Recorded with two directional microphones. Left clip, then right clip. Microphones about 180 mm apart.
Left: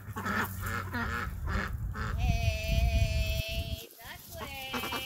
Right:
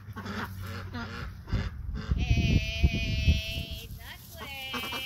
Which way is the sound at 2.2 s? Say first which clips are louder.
Right 6 dB; 55° left (ahead or behind).